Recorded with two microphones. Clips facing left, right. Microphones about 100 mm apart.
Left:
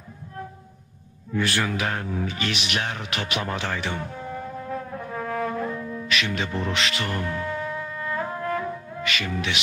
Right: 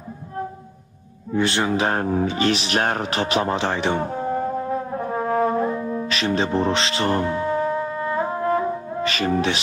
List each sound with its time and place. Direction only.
1.3 s speech: 25° right (ahead or behind)
4.6 s brass instrument: 30° right (ahead or behind)